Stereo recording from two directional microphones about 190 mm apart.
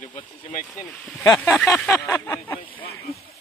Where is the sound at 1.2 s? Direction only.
10° left (ahead or behind).